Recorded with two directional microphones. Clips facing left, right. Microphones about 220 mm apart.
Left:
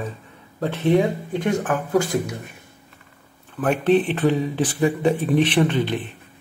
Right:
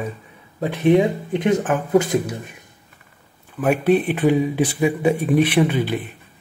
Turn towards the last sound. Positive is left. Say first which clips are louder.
# right 1 dB
turn(degrees=-10)  # may be behind; listen again after turning